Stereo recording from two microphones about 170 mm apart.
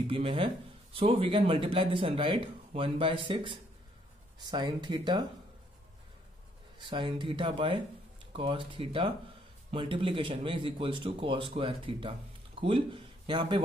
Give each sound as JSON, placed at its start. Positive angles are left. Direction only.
{"t": 0.0, "sound": "speech", "side_deg": -30}
{"t": 6.8, "sound": "speech", "side_deg": -30}